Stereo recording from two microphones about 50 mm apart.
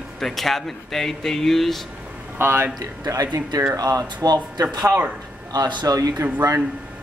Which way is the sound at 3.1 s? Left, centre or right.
Right.